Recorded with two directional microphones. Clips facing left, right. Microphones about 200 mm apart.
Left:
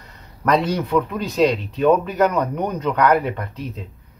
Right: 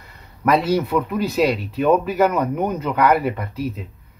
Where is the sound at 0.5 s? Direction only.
5° right (ahead or behind).